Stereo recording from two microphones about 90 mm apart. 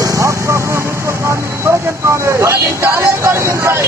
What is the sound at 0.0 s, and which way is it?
Vehicle, 35° right (ahead or behind).